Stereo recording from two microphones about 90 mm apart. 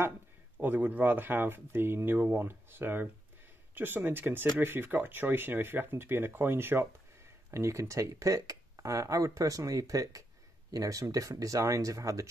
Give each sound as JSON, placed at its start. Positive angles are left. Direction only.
{"t": 0.6, "sound": "speech", "side_deg": -20}